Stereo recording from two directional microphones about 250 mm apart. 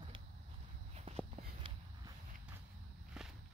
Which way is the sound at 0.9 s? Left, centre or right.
Right.